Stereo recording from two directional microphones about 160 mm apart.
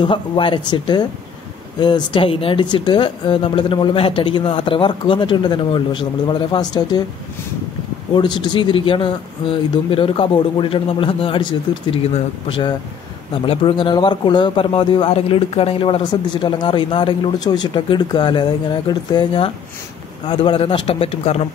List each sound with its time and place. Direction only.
0.0 s speech: 30° left (ahead or behind)
8.1 s speech: 30° left (ahead or behind)
12.4 s speech: 35° left (ahead or behind)